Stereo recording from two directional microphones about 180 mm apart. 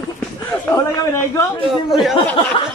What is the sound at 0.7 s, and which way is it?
Speech, 15° left (ahead or behind).